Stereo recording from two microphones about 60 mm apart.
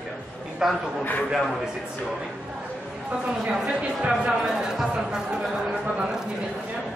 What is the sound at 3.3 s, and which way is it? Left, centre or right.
Speech, centre.